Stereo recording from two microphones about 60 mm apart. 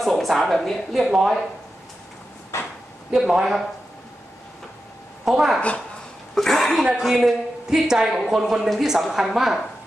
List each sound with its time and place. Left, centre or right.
0.0 s speech: centre
2.5 s a sound: left
3.1 s speech: centre
5.2 s a woman's voice: centre
6.3 s speech: centre
7.2 s speech: centre